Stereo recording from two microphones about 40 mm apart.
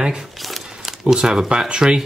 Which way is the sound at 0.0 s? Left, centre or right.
Centre.